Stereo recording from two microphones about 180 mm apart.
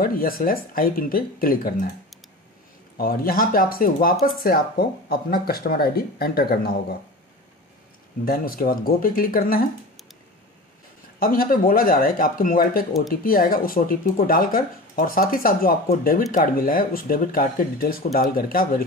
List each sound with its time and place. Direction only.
0.0 s speech: 55° left (ahead or behind)
3.0 s speech: 55° left (ahead or behind)
8.3 s speech: 55° left (ahead or behind)
11.1 s speech: 55° left (ahead or behind)